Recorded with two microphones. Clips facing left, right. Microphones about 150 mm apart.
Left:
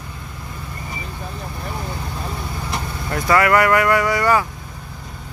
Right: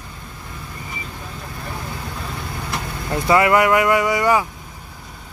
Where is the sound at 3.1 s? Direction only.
20° right (ahead or behind).